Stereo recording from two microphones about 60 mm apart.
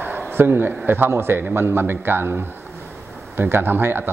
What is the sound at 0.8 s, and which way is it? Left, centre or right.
A man's voice, right.